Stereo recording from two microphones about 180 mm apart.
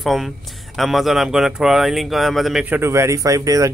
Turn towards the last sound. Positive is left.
turn(degrees=-20)  # may be behind; listen again after turning